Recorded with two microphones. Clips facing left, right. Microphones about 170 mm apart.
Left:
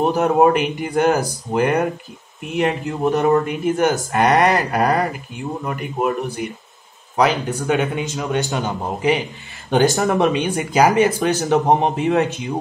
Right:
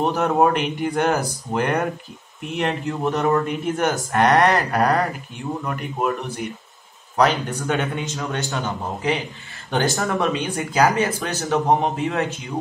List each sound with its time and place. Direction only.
0.0 s speech: 10° left (ahead or behind)